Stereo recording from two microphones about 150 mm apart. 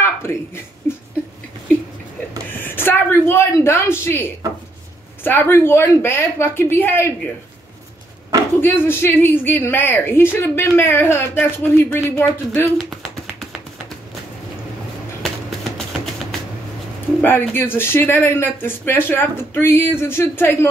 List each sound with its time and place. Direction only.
0.0 s a sound: 15° left (ahead or behind)
2.6 s speech: 15° left (ahead or behind)
8.5 s speech: 15° left (ahead or behind)
17.2 s speech: 15° left (ahead or behind)